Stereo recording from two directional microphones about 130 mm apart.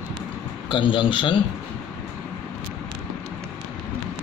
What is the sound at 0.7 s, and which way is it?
Speech, 40° left (ahead or behind).